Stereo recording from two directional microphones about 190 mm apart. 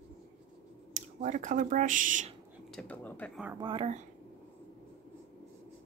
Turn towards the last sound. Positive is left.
turn(degrees=-25)  # may be behind; listen again after turning